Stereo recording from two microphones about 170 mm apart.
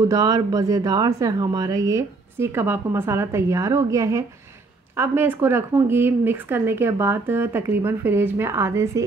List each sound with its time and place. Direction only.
0.1 s a woman's voice: 20° right (ahead or behind)